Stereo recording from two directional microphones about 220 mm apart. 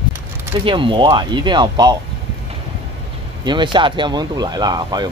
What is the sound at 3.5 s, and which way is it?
Speech, 20° right (ahead or behind).